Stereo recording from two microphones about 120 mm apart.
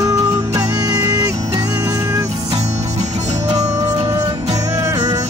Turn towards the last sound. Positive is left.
turn(degrees=-30)  # may be behind; listen again after turning